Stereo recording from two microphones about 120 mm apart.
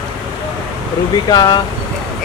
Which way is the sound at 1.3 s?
35° left (ahead or behind).